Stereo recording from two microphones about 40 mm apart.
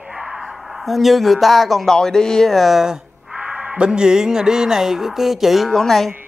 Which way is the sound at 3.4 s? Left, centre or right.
Right.